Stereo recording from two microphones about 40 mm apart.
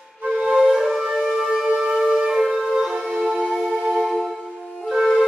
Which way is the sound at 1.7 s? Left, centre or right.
Right.